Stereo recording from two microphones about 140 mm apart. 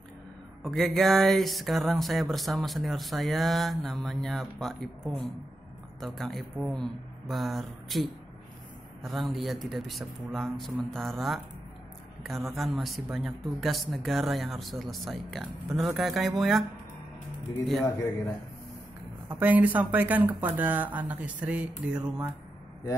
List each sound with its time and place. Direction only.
0.7 s speech: centre (ahead or behind)
12.5 s speech: centre (ahead or behind)
19.4 s speech: 10° right (ahead or behind)